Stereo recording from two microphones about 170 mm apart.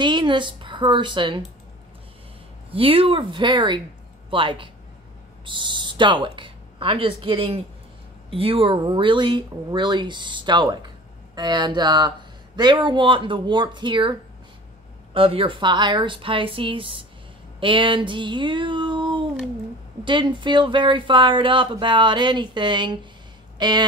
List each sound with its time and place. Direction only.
0.0 s speech: 25° right (ahead or behind)
2.7 s speech: 35° right (ahead or behind)
15.1 s speech: 30° right (ahead or behind)